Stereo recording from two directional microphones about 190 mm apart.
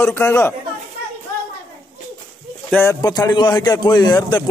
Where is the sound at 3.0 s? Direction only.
20° left (ahead or behind).